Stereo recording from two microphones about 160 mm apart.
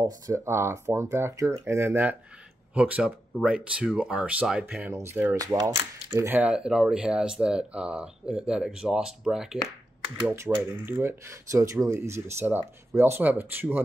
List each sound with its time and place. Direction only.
0.0 s speech: 15° right (ahead or behind)
10.7 s speech: 15° right (ahead or behind)